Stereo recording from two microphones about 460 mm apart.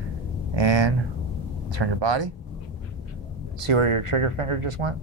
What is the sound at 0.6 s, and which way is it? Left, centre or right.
Speech, right.